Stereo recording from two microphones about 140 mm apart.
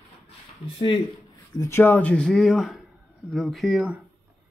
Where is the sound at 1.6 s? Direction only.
15° left (ahead or behind); by 3.9 s centre (ahead or behind).